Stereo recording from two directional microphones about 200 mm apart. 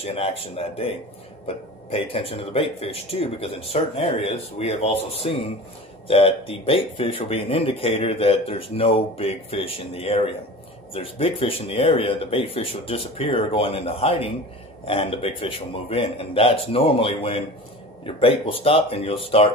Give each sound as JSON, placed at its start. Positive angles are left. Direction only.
{"t": 0.0, "sound": "speech", "side_deg": 30}